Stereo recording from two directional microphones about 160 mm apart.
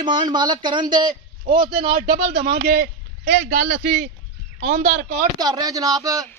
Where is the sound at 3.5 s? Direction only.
50° right (ahead or behind).